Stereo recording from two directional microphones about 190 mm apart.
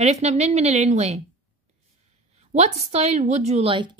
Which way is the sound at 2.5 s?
35° right (ahead or behind).